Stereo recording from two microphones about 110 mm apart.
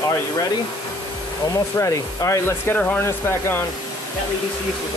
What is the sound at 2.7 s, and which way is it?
Speech, 15° left (ahead or behind).